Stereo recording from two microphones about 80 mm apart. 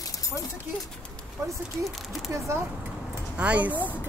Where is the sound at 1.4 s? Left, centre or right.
Right.